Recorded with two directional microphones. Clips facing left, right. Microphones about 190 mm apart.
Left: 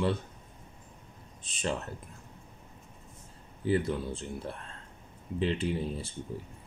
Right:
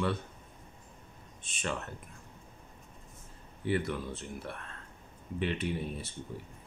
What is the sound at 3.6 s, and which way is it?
Speech, 30° left (ahead or behind).